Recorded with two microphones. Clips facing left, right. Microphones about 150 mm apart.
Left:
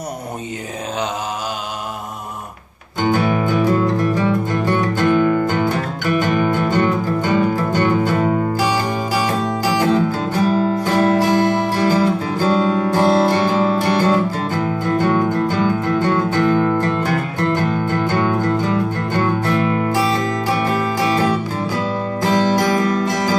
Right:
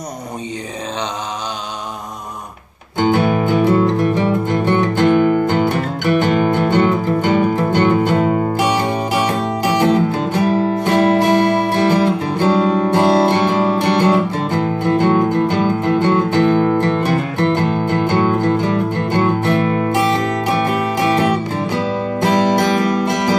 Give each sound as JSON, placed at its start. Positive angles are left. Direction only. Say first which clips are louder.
{"t": 3.0, "sound": "music", "louder": "right 2 dB", "side_deg": -20}
{"t": 10.9, "sound": "music", "louder": "right 3 dB", "side_deg": -70}
{"t": 11.7, "sound": "guitar", "louder": "right 2 dB", "side_deg": -20}